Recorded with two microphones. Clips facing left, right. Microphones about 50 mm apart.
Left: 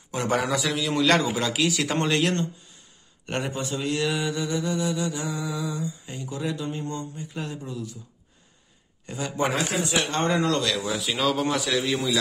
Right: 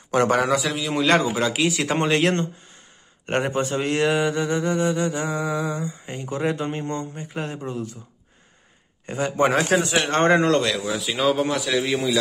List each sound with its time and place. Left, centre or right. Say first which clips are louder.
0.1 s speech: right 6 dB; right
0.7 s a man's voice: right 1 dB; centre; by 2.2 s right
2.2 s speech: right 4 dB; right
3.3 s mantra: right 6 dB; right
9.0 s mantra: right 6 dB; right
9.6 s speech: right 5 dB; right
11.0 s speech: right 6 dB; centre